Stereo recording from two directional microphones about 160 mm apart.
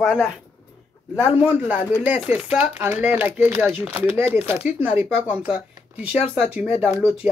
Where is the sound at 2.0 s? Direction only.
10° right (ahead or behind).